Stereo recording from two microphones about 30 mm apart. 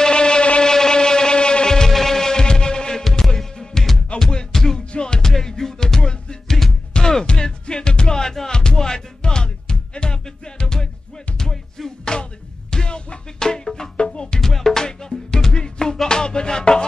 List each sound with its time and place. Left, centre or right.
0.0 s vehicle: left
1.9 s heart sounds: centre; by 3.0 s left
3.0 s music: centre; by 5.3 s left
5.3 s music: centre
5.9 s music: left
6.4 s music: centre; by 8.2 s left
8.2 s music: centre
12.0 s music: left
14.4 s music: centre